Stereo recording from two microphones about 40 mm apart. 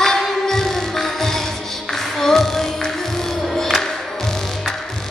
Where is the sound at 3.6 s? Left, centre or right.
Centre.